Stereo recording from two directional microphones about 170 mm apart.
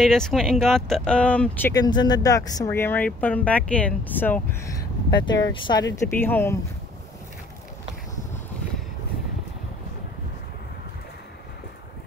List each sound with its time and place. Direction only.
0.0 s speech: 5° left (ahead or behind)
1.7 s speech: 25° left (ahead or behind)
5.1 s speech: 25° left (ahead or behind)
6.1 s speech: 10° left (ahead or behind)